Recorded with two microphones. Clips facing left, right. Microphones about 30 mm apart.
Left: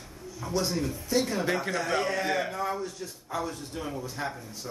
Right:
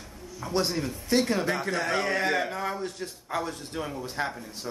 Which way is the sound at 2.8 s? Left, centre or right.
Right.